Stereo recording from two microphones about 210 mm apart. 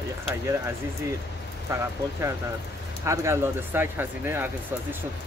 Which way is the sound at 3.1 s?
15° right (ahead or behind).